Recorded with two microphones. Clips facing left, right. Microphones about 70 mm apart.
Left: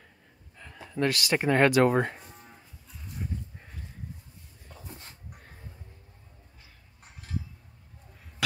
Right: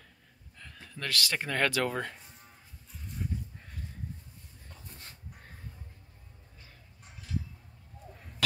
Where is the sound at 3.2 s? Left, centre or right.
Centre.